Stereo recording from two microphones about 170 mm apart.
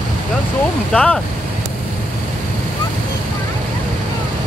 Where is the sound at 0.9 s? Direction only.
5° left (ahead or behind).